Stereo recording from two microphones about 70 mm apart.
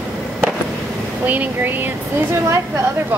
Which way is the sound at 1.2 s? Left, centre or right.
Right.